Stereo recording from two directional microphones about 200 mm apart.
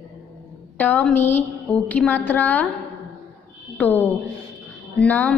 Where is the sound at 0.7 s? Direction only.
10° left (ahead or behind).